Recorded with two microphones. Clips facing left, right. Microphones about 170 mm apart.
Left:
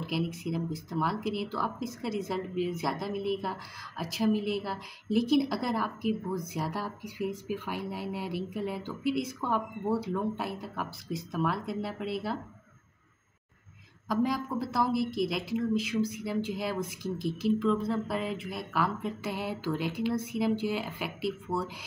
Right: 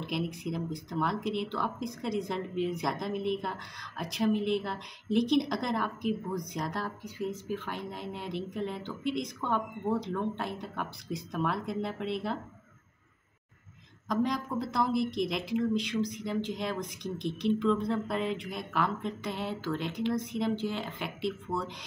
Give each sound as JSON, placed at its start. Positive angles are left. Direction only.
{"t": 0.0, "sound": "a woman's voice", "side_deg": 0}
{"t": 14.0, "sound": "a woman's voice", "side_deg": 5}